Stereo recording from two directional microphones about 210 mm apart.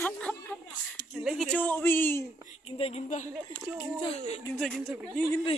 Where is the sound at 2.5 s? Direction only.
30° left (ahead or behind).